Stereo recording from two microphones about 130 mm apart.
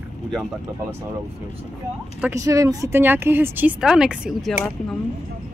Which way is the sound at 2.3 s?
25° right (ahead or behind).